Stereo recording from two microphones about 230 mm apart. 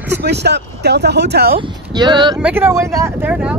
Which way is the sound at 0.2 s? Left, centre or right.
Right.